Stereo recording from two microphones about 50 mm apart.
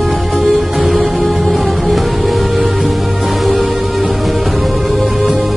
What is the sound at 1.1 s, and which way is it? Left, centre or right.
Music, centre.